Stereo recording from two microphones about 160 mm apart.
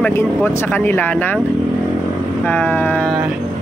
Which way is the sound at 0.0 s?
10° left (ahead or behind).